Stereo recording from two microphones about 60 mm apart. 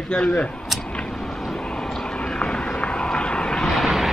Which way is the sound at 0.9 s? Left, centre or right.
Centre.